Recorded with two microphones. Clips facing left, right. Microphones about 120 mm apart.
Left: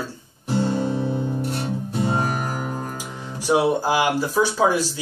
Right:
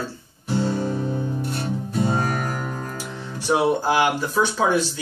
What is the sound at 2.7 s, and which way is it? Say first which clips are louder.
Music: left 2 dB; 30° left (ahead or behind).